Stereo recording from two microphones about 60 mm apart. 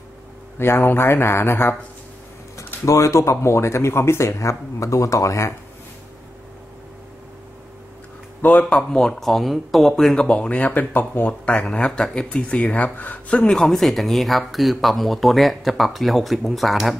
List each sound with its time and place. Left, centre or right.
0.6 s speech: left
2.5 s speech: left
8.4 s speech: left
9.1 s speech: centre
10.2 s speech: centre
13.5 s speech: centre